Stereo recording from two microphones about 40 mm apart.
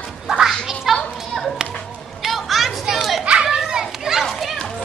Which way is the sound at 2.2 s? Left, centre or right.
Centre.